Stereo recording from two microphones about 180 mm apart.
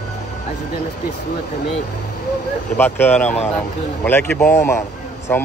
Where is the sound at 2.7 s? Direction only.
10° left (ahead or behind).